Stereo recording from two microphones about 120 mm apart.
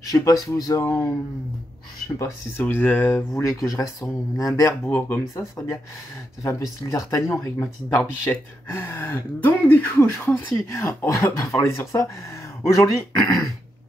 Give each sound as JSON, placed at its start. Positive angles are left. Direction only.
{"t": 0.0, "sound": "speech", "side_deg": 30}
{"t": 2.1, "sound": "speech", "side_deg": 25}
{"t": 6.9, "sound": "speech", "side_deg": 25}